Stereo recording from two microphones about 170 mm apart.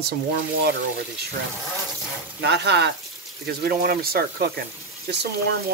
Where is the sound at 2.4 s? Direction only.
80° right.